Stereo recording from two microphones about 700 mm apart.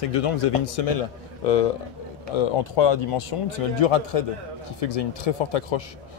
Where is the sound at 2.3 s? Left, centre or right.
Left.